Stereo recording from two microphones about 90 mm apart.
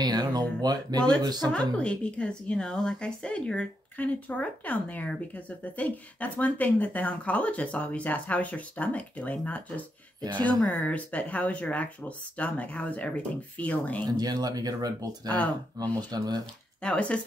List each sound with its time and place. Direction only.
0.0 s speech: 50° right (ahead or behind)
1.5 s a woman's voice: 15° left (ahead or behind)
14.0 s speech: 50° right (ahead or behind)
16.8 s a woman's voice: 15° left (ahead or behind)